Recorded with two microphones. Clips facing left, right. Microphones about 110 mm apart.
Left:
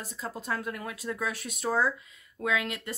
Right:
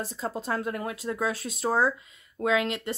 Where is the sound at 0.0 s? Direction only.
30° right (ahead or behind).